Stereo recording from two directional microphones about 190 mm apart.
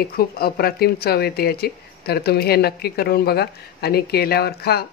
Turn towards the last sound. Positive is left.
turn(degrees=55)  # may be behind; listen again after turning